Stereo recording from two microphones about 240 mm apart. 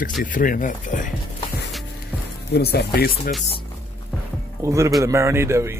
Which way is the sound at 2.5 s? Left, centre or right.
Left.